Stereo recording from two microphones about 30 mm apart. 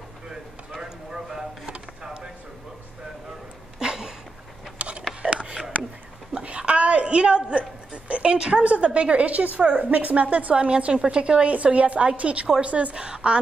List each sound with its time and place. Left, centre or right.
0.8 s clip-clop: centre
3.8 s a sound: right
4.7 s a sound: right
8.8 s a woman's voice: right
9.2 s a woman's voice: right
11.5 s a woman's voice: right
13.0 s a woman's voice: right